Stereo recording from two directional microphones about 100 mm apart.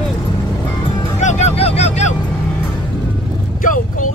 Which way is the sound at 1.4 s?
85° left.